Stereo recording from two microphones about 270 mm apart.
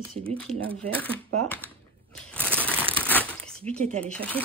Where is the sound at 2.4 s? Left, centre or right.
Centre.